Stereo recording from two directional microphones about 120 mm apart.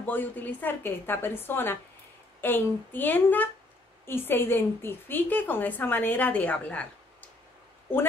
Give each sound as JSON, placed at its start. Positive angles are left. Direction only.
{"t": 0.0, "sound": "a woman's voice", "side_deg": 15}